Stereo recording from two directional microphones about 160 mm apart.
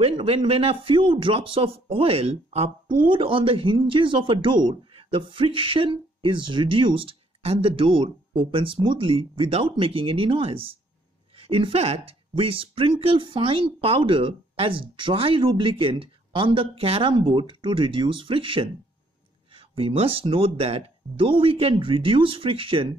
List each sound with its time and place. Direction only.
0.0 s speech: 35° right (ahead or behind)